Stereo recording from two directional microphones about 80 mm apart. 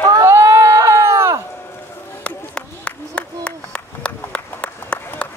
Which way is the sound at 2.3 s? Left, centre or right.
Centre.